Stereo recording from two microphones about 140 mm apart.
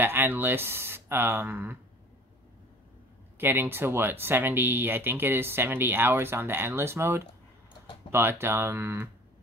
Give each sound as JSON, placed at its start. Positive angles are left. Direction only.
{"t": 0.0, "sound": "speech", "side_deg": -15}
{"t": 3.3, "sound": "speech", "side_deg": -15}